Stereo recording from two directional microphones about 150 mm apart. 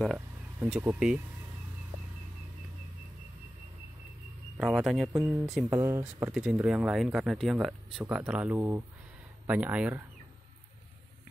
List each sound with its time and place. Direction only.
0.7 s speech: 5° right (ahead or behind)
4.6 s speech: centre (ahead or behind)
5.2 s speech: 10° right (ahead or behind)
6.3 s speech: 5° right (ahead or behind)
8.0 s speech: 10° right (ahead or behind)